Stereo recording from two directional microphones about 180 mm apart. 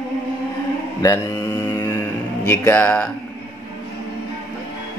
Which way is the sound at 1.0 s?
15° left (ahead or behind).